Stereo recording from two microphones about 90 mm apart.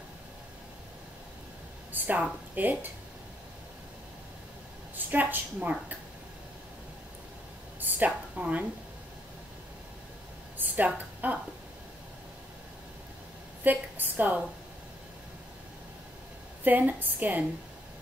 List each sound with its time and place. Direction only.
1.9 s a sound: 20° right (ahead or behind)
2.5 s a woman's voice: 20° right (ahead or behind)
4.9 s a woman's voice: 20° right (ahead or behind)
7.8 s a woman's voice: 15° right (ahead or behind)
10.6 s a sound: 15° right (ahead or behind)
13.7 s a woman's voice: 20° right (ahead or behind)
16.6 s a woman's voice: 20° right (ahead or behind)